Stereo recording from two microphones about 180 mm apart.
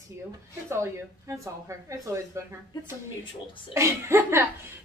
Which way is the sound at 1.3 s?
15° right (ahead or behind).